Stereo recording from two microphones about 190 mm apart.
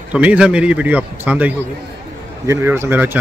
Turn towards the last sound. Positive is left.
turn(degrees=-10)  # may be behind; listen again after turning